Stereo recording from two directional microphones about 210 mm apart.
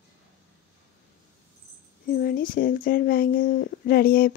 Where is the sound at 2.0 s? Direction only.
45° left (ahead or behind).